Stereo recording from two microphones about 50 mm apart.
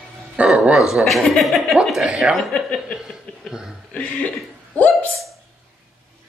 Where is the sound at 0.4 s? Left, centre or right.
Right.